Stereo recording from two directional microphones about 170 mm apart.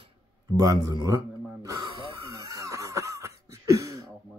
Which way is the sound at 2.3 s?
20° right (ahead or behind).